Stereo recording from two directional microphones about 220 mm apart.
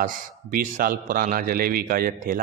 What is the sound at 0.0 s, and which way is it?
A man's voice, 40° right (ahead or behind).